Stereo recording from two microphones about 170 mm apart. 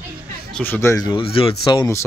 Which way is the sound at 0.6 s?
10° left (ahead or behind).